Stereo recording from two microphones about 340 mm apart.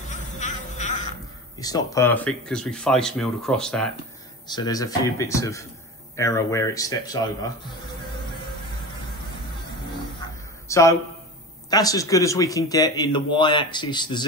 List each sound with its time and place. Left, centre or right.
0.1 s a sound: left
1.6 s speech: centre
10.7 s speech: centre